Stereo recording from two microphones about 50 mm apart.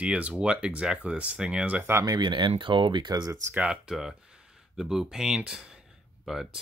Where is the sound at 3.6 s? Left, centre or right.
Centre.